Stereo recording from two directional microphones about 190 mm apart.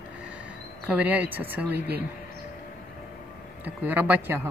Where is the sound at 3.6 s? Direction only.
10° right (ahead or behind).